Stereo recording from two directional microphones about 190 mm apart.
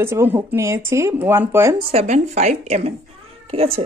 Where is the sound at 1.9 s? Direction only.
35° right (ahead or behind).